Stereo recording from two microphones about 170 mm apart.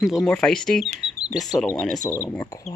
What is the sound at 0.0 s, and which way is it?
Speech, centre (ahead or behind).